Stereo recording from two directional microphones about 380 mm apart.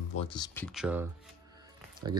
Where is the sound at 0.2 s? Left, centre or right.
Centre.